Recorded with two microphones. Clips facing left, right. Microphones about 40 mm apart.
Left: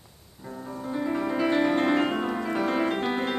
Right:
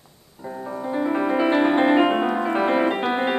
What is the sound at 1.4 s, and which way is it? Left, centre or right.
Music, right.